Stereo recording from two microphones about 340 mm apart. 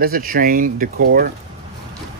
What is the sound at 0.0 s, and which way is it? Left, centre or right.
Speech, right.